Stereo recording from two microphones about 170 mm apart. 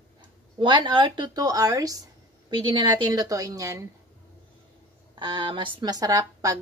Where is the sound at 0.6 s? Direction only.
25° right (ahead or behind).